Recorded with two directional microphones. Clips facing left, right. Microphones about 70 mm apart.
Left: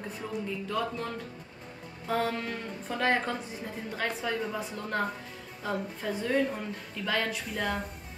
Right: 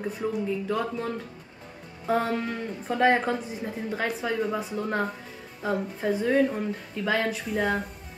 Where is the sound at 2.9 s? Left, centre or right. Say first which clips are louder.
Right 6 dB; right.